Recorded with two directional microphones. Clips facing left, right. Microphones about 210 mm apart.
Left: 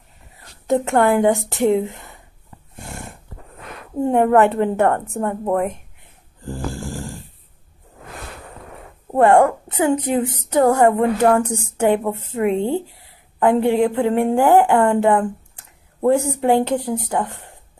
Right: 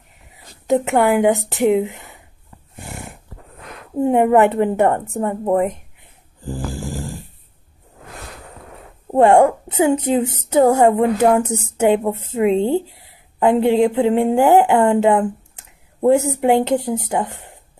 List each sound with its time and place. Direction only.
0.7 s a woman's voice: 15° right (ahead or behind)
2.7 s a sound: centre (ahead or behind)
4.0 s a woman's voice: 15° right (ahead or behind)
6.4 s snoring: 15° right (ahead or behind)
9.0 s a woman's voice: 20° right (ahead or behind)
11.7 s a woman's voice: 20° right (ahead or behind)